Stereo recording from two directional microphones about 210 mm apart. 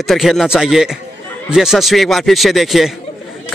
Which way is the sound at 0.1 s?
Centre (ahead or behind).